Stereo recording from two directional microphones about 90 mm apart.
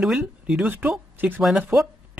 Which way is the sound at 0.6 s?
20° right (ahead or behind).